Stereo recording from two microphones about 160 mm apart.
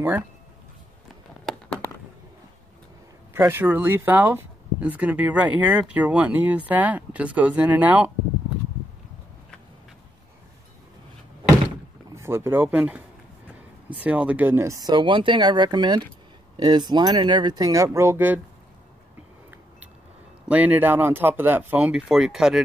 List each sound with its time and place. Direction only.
1.4 s a sound: 5° left (ahead or behind)
3.3 s speech: 15° right (ahead or behind)
12.2 s speech: 15° right (ahead or behind)
20.4 s speech: 10° right (ahead or behind)